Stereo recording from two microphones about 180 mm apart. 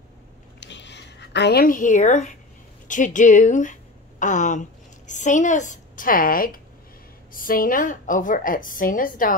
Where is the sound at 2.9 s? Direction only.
45° left (ahead or behind).